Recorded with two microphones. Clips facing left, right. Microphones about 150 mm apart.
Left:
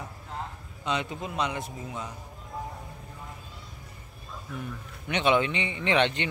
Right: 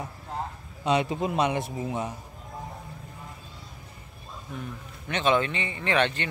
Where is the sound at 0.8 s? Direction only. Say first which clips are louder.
Right 6 dB; 20° right (ahead or behind).